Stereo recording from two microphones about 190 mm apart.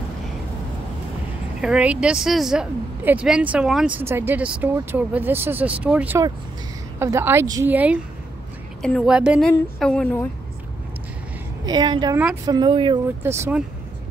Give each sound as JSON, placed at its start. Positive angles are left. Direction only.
{"t": 1.6, "sound": "a woman's voice", "side_deg": -5}
{"t": 11.6, "sound": "a woman's voice", "side_deg": -20}
{"t": 13.2, "sound": "a woman's voice", "side_deg": -15}